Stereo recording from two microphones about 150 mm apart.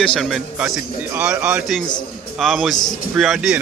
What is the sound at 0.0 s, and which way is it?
A man's voice, centre (ahead or behind).